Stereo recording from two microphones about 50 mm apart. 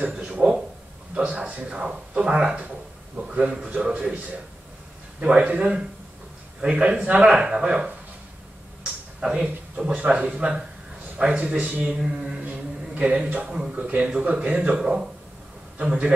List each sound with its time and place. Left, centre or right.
0.1 s a sound: right
1.1 s a man's voice: right
5.4 s speech: right
9.4 s speech: centre
12.4 s a sound: right
13.5 s speech: centre